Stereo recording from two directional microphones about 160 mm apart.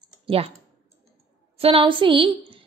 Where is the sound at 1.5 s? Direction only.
35° right (ahead or behind).